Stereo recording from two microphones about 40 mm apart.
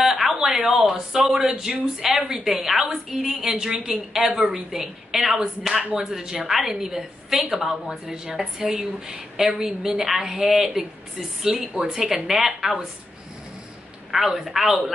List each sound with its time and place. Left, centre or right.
0.0 s a sound: centre
1.2 s a woman's voice: centre
2.4 s a woman's voice: centre
14.4 s a woman's voice: centre